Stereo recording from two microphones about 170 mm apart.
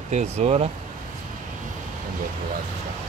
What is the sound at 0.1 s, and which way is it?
Speech, 40° right (ahead or behind).